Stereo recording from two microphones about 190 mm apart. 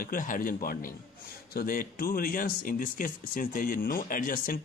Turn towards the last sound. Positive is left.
turn(degrees=45)  # may be behind; listen again after turning